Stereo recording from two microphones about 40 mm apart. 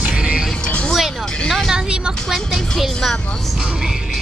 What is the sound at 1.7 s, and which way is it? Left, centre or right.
Vehicle, right.